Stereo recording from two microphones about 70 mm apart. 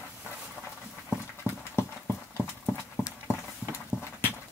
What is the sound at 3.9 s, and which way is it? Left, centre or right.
Clip-clop, centre.